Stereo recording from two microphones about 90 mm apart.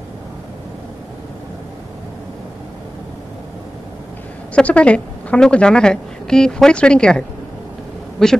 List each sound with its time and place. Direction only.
4.6 s a woman's voice: 15° left (ahead or behind)